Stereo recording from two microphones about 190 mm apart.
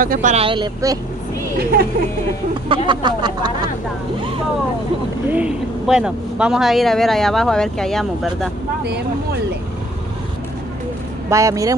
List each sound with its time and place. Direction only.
0.0 s speech: 45° right (ahead or behind)
0.5 s a sound: 20° right (ahead or behind)
1.6 s speech: 50° right (ahead or behind)
2.7 s a sound: 25° right (ahead or behind)
5.3 s speech: 5° right (ahead or behind)
8.8 s speech: 60° right (ahead or behind)
11.2 s speech: 15° right (ahead or behind)